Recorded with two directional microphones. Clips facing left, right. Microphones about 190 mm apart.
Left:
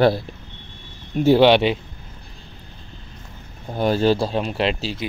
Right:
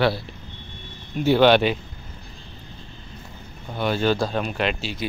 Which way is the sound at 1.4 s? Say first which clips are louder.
Right 2 dB; 25° left (ahead or behind).